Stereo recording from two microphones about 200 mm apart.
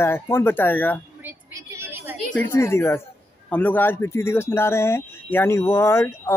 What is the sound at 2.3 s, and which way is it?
Speech, 10° left (ahead or behind).